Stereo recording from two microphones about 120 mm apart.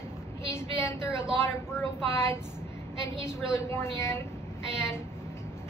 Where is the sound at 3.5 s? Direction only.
25° left (ahead or behind).